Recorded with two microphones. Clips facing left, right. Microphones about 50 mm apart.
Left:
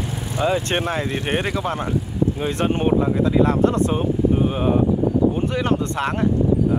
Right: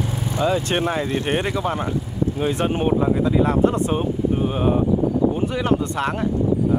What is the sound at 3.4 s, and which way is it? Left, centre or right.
Speech, centre.